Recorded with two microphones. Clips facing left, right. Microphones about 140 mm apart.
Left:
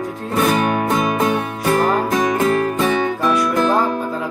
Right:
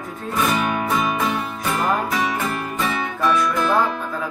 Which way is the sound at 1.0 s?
55° left (ahead or behind).